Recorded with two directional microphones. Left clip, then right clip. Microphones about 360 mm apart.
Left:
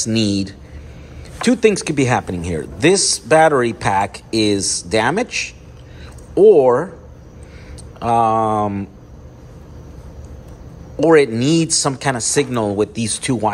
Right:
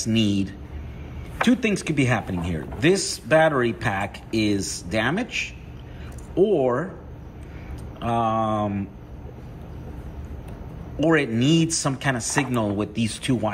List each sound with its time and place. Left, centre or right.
0.2 s speech: left
1.5 s speech: centre
8.0 s speech: centre
11.0 s speech: centre